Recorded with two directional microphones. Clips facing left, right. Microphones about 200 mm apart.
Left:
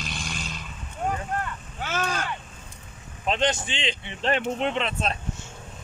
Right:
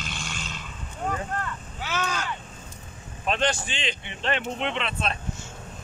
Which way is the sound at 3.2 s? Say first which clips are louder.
Left 1 dB; 20° left (ahead or behind).